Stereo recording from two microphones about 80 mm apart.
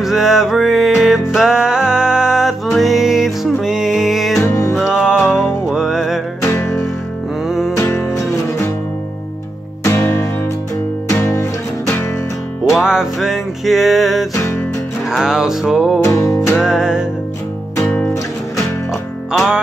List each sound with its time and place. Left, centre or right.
0.0 s music: centre
4.5 s music: left
4.8 s music: centre
7.4 s music: centre
7.7 s music: left
9.8 s music: left
12.7 s music: centre
14.3 s music: left
15.0 s music: centre
16.0 s music: left
16.5 s music: centre
17.8 s music: centre
19.3 s music: centre